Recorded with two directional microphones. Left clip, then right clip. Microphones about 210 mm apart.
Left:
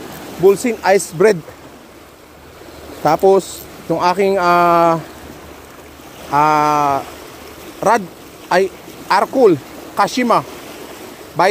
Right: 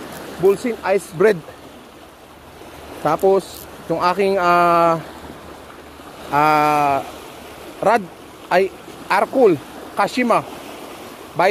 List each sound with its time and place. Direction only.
0.7 s speech: 25° left (ahead or behind)
1.1 s speech: 10° left (ahead or behind)
3.0 s speech: 10° left (ahead or behind)
6.3 s a sound: centre (ahead or behind)
8.5 s speech: 5° left (ahead or behind)